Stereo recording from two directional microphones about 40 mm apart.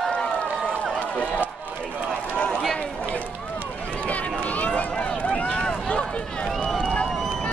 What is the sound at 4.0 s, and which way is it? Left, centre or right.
Run, left.